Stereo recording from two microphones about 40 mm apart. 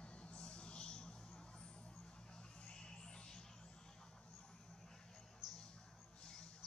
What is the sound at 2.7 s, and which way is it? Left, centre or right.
Music, left.